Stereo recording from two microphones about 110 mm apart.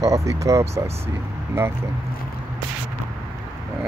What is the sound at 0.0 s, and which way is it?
Speech, 30° right (ahead or behind).